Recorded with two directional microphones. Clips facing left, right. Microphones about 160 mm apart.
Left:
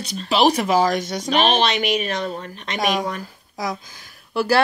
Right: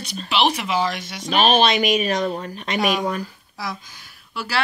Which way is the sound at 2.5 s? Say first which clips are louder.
Right 4 dB; 10° right (ahead or behind).